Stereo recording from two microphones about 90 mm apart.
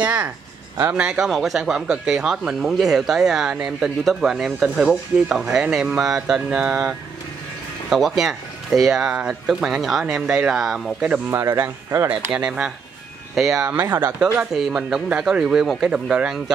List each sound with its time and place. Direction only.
0.0 s speech: 15° right (ahead or behind)
11.1 s speech: 25° right (ahead or behind)
12.3 s speech: 10° right (ahead or behind)
13.7 s speech: 20° right (ahead or behind)